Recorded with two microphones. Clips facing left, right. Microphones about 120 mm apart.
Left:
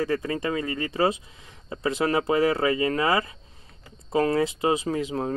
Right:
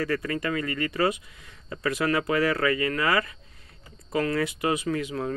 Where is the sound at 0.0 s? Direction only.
25° left (ahead or behind).